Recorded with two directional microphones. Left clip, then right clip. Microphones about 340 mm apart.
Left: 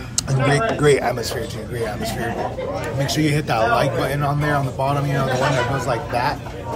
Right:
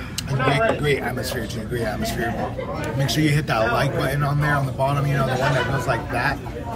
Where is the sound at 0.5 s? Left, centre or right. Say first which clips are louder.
Left 3 dB; left.